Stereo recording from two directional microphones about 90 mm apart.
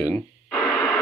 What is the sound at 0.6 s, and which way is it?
Radio, centre (ahead or behind).